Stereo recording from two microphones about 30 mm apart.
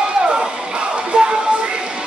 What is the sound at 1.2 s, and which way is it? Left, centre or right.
Music, right.